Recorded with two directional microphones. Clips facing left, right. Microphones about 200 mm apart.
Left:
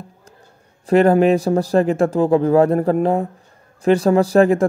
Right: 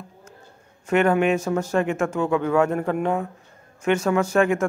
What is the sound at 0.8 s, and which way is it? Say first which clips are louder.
Speech: left 6 dB; 35° left (ahead or behind).